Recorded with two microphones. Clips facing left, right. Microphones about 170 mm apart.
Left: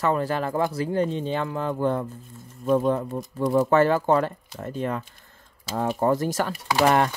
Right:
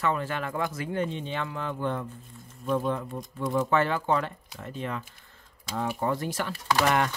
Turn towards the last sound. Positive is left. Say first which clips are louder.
# left 4 dB
turn(degrees=35)  # may be behind; listen again after turning